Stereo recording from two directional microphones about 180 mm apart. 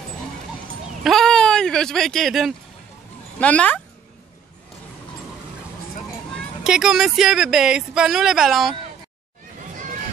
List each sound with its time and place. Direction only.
1.0 s a sound: centre (ahead or behind)
3.3 s speech: 10° left (ahead or behind)
6.6 s speech: 5° right (ahead or behind)